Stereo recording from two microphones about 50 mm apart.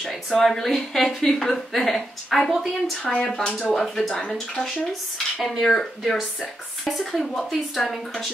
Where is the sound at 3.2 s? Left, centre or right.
Centre.